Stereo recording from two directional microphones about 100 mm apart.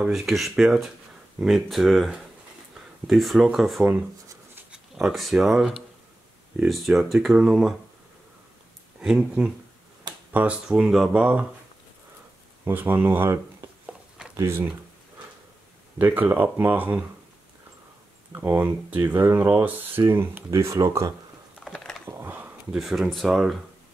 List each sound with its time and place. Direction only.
0.0 s speech: 5° right (ahead or behind)
4.9 s speech: centre (ahead or behind)
9.0 s speech: 5° right (ahead or behind)
12.6 s speech: 20° right (ahead or behind)
14.3 s speech: 25° right (ahead or behind)
16.0 s speech: 20° right (ahead or behind)
18.3 s speech: 25° right (ahead or behind)
21.7 s a sound: 5° left (ahead or behind)
22.0 s a sound: 20° right (ahead or behind)
22.8 s speech: centre (ahead or behind)